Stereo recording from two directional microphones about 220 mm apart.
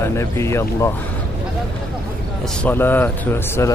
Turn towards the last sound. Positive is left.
turn(degrees=10)  # may be behind; listen again after turning